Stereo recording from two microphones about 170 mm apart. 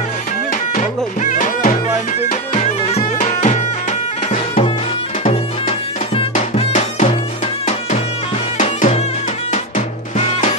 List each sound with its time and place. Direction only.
0.7 s music: 45° left (ahead or behind)
5.3 s music: 35° left (ahead or behind)
8.5 s music: 40° left (ahead or behind)